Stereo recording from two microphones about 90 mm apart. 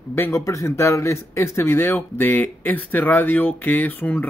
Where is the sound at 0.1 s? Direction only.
30° left (ahead or behind).